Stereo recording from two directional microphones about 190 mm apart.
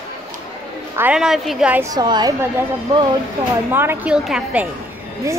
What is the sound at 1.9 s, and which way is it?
Speech, 20° right (ahead or behind).